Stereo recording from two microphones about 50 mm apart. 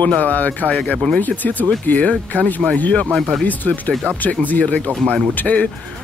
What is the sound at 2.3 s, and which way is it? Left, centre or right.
Speech, right.